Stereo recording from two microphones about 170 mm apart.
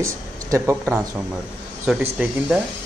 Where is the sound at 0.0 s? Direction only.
15° right (ahead or behind).